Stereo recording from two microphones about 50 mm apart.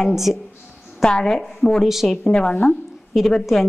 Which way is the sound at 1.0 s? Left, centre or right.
Centre.